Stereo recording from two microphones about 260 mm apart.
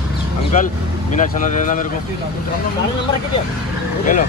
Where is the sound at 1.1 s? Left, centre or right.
Left.